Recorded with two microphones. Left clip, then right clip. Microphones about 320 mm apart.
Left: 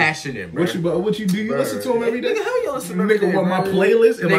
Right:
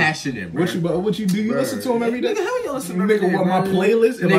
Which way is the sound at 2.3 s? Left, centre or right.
Centre.